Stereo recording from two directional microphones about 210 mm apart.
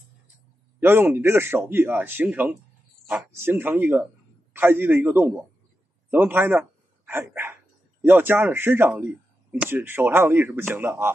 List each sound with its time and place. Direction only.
0.7 s speech: 10° right (ahead or behind)